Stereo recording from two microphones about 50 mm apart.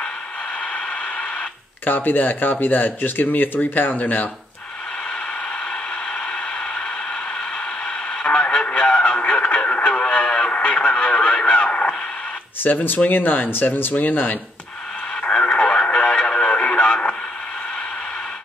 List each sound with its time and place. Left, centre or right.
0.7 s a sound: left
1.9 s speech: left
5.7 s a sound: centre
7.8 s radio: centre
12.6 s speech: left
15.2 s radio: left